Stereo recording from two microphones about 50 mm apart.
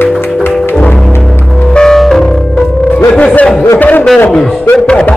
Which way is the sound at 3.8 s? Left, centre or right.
Left.